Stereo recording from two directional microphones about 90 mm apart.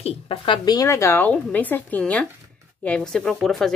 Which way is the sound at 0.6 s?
50° left (ahead or behind).